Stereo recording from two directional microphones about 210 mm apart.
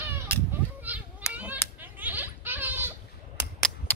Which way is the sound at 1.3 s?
5° right (ahead or behind).